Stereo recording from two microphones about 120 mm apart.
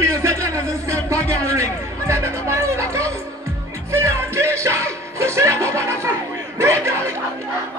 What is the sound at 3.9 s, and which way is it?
Speech, 20° right (ahead or behind).